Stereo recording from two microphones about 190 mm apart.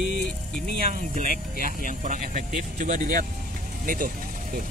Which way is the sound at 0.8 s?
45° right (ahead or behind).